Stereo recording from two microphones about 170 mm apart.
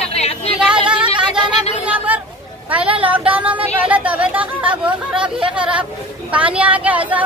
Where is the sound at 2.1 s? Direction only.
10° right (ahead or behind).